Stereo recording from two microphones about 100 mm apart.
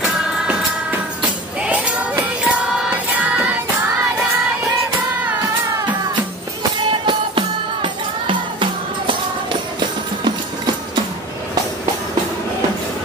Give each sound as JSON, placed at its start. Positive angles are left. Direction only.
{"t": 0.0, "sound": "music", "side_deg": -5}
{"t": 1.7, "sound": "music", "side_deg": -15}
{"t": 6.9, "sound": "music", "side_deg": -55}